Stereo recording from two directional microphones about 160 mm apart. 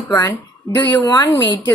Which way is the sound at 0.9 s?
25° left (ahead or behind).